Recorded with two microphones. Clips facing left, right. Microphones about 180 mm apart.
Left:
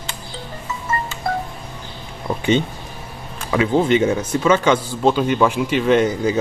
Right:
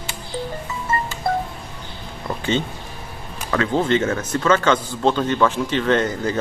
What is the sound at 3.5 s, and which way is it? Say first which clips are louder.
A man's voice: left 3 dB; 10° left (ahead or behind).